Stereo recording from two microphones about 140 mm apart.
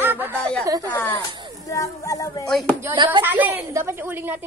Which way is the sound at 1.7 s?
25° left (ahead or behind).